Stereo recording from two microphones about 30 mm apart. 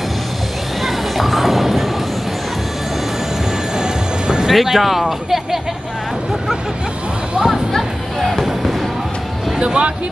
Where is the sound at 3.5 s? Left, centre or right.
Right.